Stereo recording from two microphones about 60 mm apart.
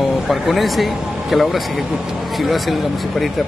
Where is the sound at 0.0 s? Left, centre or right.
Centre.